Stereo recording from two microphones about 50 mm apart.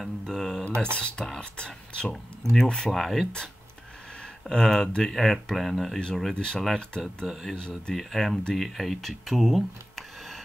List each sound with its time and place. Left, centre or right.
0.0 s a sound: centre
0.7 s a sound: right
0.9 s speech: centre
4.5 s speech: centre
5.9 s speech: centre
7.9 s speech: centre